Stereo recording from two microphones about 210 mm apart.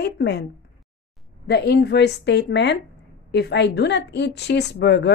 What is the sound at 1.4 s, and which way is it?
A woman's voice, 55° left (ahead or behind).